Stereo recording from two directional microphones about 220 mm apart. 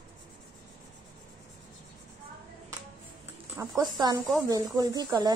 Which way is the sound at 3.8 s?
20° right (ahead or behind).